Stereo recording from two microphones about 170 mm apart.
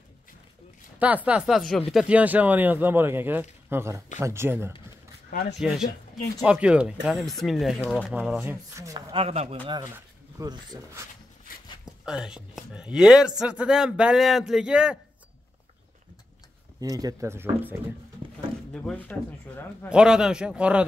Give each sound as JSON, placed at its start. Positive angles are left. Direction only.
{"t": 0.9, "sound": "speech", "side_deg": -10}
{"t": 5.6, "sound": "speech", "side_deg": -5}
{"t": 8.7, "sound": "speech", "side_deg": -20}
{"t": 9.1, "sound": "speech", "side_deg": -35}
{"t": 9.7, "sound": "speech", "side_deg": -20}
{"t": 11.8, "sound": "speech", "side_deg": -5}
{"t": 16.8, "sound": "speech", "side_deg": -20}
{"t": 18.7, "sound": "a man's voice", "side_deg": 5}
{"t": 19.9, "sound": "speech", "side_deg": -5}